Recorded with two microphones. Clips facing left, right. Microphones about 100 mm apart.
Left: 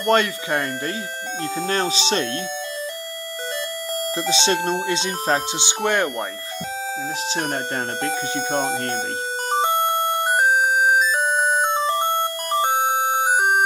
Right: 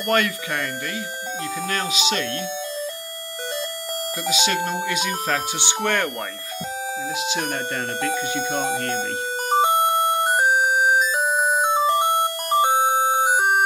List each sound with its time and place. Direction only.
0.0 s speech: 25° left (ahead or behind)
4.2 s speech: 30° left (ahead or behind)
7.2 s speech: 30° left (ahead or behind)
10.2 s music: 15° right (ahead or behind)